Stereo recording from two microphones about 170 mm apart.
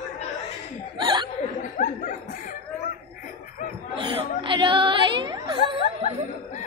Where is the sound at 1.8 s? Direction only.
50° left (ahead or behind).